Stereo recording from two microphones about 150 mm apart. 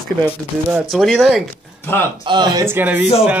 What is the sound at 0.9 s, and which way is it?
Speech, centre (ahead or behind).